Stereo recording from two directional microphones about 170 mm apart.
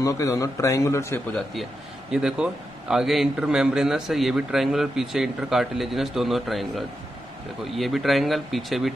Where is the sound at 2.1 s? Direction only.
5° right (ahead or behind).